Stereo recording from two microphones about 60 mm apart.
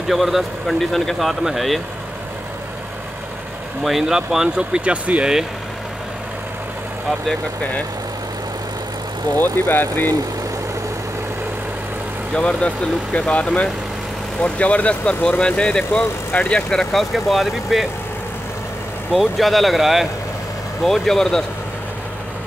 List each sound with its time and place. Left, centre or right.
0.1 s speech: centre
3.8 s speech: centre; by 5.3 s right
9.4 s speech: left
12.4 s speech: centre
16.7 s speech: centre
19.1 s speech: centre